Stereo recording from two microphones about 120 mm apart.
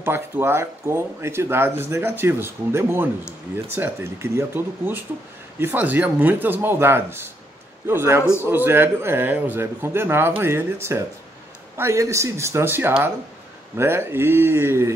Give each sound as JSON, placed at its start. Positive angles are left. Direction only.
{"t": 0.0, "sound": "a man's voice", "side_deg": -20}